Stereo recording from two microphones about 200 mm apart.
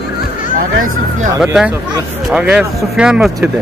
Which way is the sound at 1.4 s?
5° right (ahead or behind).